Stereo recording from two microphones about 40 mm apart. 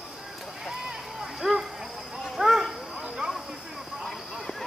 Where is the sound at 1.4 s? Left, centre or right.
Centre.